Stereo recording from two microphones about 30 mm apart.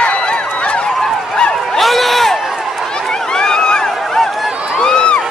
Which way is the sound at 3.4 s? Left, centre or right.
Left.